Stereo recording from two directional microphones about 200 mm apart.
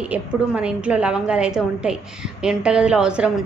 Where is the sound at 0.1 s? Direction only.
5° right (ahead or behind).